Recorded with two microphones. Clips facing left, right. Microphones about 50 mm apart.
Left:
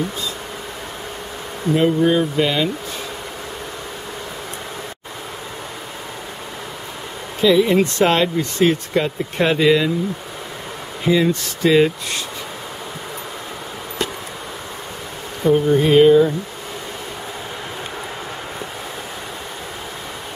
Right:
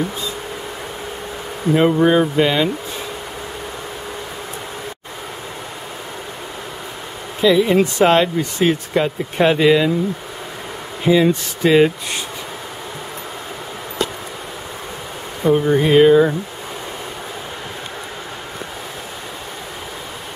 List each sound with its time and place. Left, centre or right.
1.7 s speech: right
7.4 s speech: centre
11.1 s speech: centre
15.4 s speech: centre